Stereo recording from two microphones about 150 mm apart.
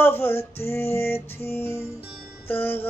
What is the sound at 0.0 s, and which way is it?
Music, 15° left (ahead or behind).